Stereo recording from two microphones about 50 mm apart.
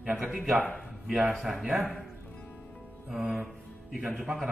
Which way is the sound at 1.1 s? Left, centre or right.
Right.